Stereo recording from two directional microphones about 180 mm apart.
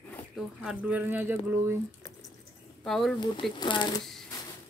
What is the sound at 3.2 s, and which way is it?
Speech, 25° left (ahead or behind).